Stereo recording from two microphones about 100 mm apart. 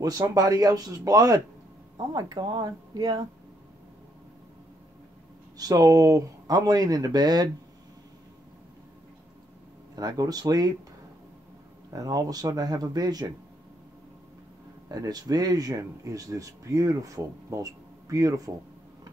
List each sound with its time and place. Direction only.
0.3 s speech: 40° right (ahead or behind)
5.6 s speech: 40° right (ahead or behind)
9.9 s speech: 40° right (ahead or behind)
11.9 s speech: 35° right (ahead or behind)
14.9 s speech: 40° right (ahead or behind)